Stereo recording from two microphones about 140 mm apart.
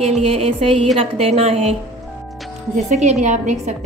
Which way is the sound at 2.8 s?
55° right (ahead or behind).